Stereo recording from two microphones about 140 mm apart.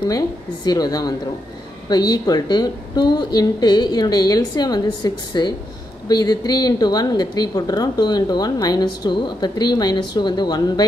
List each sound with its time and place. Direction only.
0.7 s a woman's voice: 25° left (ahead or behind)